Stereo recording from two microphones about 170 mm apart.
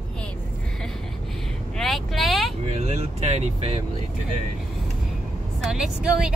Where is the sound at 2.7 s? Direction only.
40° right (ahead or behind).